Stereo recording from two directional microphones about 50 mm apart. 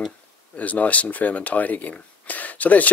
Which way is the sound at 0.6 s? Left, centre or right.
Left.